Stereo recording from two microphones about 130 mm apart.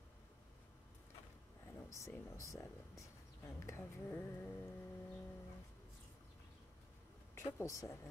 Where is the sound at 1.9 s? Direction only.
25° left (ahead or behind).